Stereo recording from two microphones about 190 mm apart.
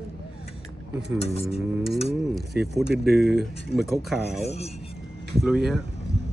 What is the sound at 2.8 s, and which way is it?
Speech, 55° right (ahead or behind).